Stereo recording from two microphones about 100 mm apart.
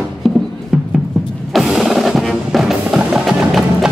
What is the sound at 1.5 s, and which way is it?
Music, centre (ahead or behind).